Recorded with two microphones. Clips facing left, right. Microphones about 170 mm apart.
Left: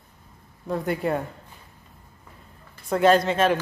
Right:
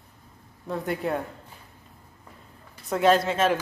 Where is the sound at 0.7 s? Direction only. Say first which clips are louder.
Left 3 dB; centre (ahead or behind).